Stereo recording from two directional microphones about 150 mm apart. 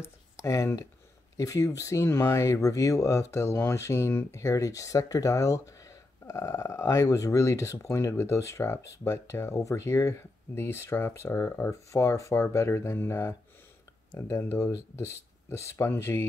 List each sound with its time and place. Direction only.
0.0 s speech: 20° left (ahead or behind)